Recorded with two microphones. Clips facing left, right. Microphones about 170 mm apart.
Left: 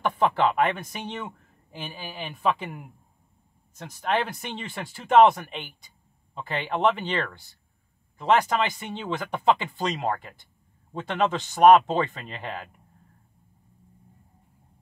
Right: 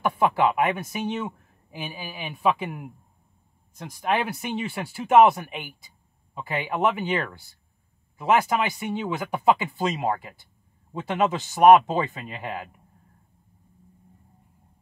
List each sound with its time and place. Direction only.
0.0 s speech: 10° right (ahead or behind)